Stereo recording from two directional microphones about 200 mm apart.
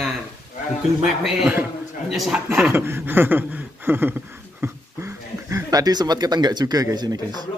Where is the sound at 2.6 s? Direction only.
10° right (ahead or behind).